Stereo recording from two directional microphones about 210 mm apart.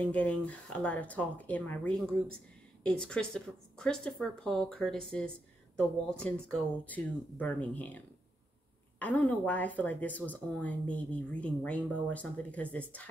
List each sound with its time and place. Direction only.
0.0 s a woman's voice: 5° left (ahead or behind)
9.0 s speech: 5° left (ahead or behind)